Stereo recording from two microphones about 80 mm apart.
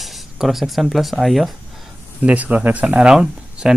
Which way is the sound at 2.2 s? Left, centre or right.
Centre.